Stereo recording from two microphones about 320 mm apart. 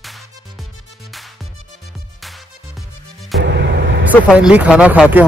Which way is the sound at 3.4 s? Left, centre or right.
Right.